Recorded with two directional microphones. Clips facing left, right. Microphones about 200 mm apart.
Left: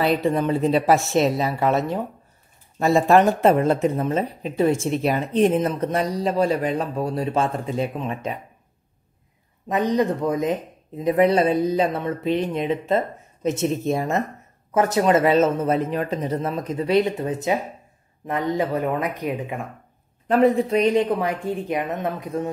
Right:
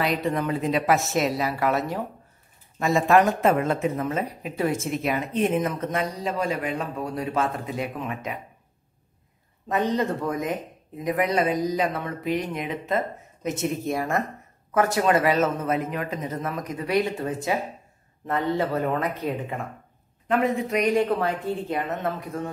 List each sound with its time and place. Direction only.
0.0 s speech: 30° left (ahead or behind)
9.7 s speech: 15° left (ahead or behind)
20.2 s speech: 35° left (ahead or behind)